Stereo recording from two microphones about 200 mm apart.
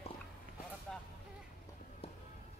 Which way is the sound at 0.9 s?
Centre (ahead or behind).